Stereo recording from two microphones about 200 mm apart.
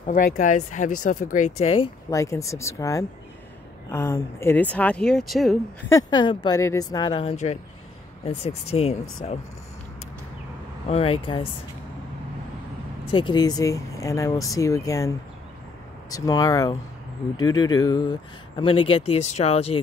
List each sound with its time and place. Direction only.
0.0 s speech: 40° left (ahead or behind)
0.9 s speech: 90° left
1.2 s speech: 40° left (ahead or behind)
2.0 s speech: 15° left (ahead or behind); by 5.9 s centre (ahead or behind)
5.9 s speech: 20° left (ahead or behind)
10.9 s speech: 30° left (ahead or behind)
13.1 s speech: 25° left (ahead or behind)
16.2 s speech: 20° left (ahead or behind)